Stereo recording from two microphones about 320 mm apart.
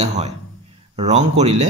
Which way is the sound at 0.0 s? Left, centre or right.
Centre.